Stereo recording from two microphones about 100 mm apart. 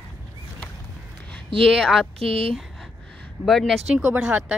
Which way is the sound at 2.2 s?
75° right (ahead or behind).